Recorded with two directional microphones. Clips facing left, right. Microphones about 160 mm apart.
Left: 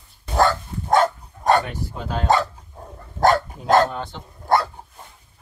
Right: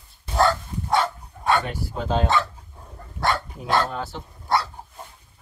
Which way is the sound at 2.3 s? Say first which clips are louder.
Left 8 dB; 40° left (ahead or behind).